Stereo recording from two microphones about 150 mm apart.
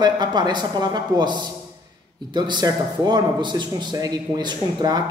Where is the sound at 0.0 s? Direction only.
30° right (ahead or behind).